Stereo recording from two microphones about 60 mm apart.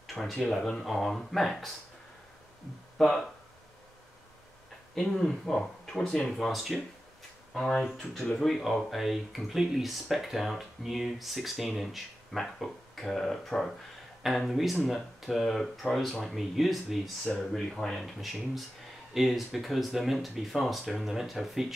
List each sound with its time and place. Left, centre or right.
0.0 s speech: centre
3.0 s speech: centre
4.9 s speech: centre